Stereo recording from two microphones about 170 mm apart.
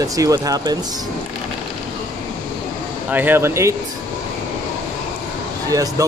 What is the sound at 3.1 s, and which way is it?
Speech, 10° right (ahead or behind).